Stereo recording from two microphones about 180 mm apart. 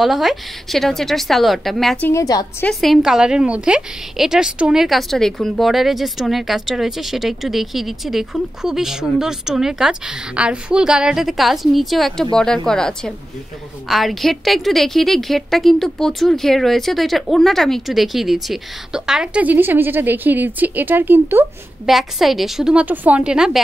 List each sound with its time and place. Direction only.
0.0 s a woman's voice: centre (ahead or behind)
2.0 s a woman's voice: 20° left (ahead or behind)
2.6 s a woman's voice: centre (ahead or behind)
21.8 s a woman's voice: centre (ahead or behind)